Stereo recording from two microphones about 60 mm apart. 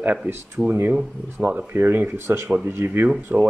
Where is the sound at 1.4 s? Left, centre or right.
Right.